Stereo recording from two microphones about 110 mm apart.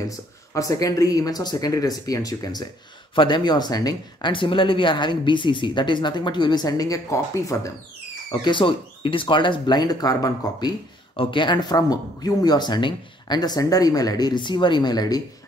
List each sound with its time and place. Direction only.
0.5 s speech: 30° left (ahead or behind)
3.2 s speech: 45° left (ahead or behind); by 7.7 s 30° left (ahead or behind)
8.3 s speech: 45° left (ahead or behind)
11.1 s speech: 50° left (ahead or behind)